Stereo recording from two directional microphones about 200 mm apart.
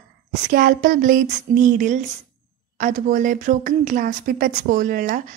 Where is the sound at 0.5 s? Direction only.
45° right (ahead or behind).